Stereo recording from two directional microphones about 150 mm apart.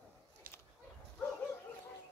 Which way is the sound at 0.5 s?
75° right (ahead or behind).